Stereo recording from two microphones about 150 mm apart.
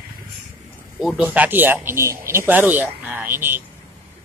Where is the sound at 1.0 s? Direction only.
5° right (ahead or behind).